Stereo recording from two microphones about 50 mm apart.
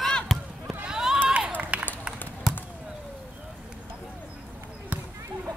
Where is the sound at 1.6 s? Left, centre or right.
Right.